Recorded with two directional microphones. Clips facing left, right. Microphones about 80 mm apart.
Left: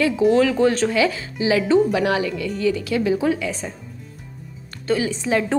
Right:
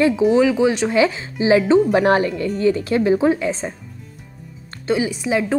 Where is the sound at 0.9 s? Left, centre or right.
Right.